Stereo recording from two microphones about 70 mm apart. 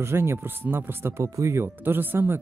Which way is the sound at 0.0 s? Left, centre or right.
Right.